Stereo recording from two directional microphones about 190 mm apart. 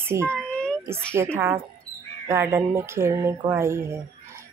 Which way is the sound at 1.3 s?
10° right (ahead or behind).